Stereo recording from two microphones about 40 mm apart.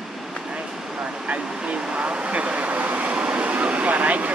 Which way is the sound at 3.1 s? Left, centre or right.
Right.